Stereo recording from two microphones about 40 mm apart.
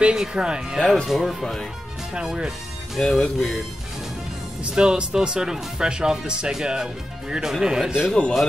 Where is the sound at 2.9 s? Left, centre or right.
Centre.